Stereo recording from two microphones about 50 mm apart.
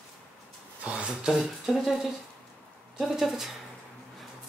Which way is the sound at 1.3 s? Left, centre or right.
Centre.